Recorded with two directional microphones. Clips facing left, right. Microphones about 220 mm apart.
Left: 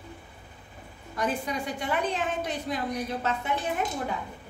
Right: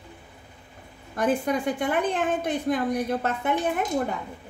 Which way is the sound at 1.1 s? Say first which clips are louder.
Right 6 dB; 50° right (ahead or behind).